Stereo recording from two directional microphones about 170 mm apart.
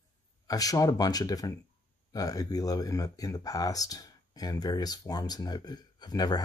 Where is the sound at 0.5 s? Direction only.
20° left (ahead or behind).